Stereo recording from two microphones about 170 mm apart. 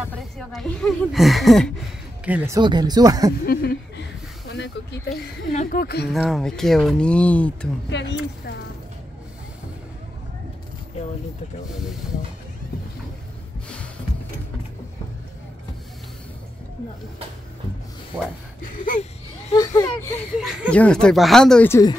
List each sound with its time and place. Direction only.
0.4 s speech: centre (ahead or behind)
2.5 s speech: 25° right (ahead or behind)
3.4 s speech: 70° left (ahead or behind)
5.5 s speech: 50° left (ahead or behind); by 6.0 s 65° left (ahead or behind)
6.1 s speech: centre (ahead or behind)
18.6 s a sound: 50° left (ahead or behind)
19.5 s speech: 20° left (ahead or behind)
20.4 s speech: 5° right (ahead or behind)
21.6 s speech: 15° left (ahead or behind)